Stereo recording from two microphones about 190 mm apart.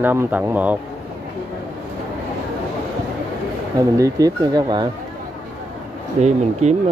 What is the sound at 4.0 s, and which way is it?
Speech, 20° right (ahead or behind).